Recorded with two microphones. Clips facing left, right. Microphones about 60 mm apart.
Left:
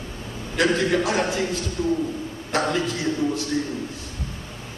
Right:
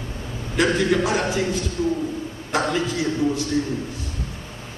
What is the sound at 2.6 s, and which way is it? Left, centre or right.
Speech, centre.